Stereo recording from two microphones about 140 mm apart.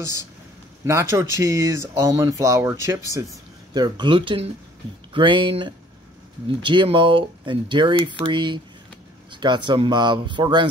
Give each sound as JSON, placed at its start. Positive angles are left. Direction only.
{"t": 0.8, "sound": "speech", "side_deg": -20}
{"t": 3.7, "sound": "speech", "side_deg": -30}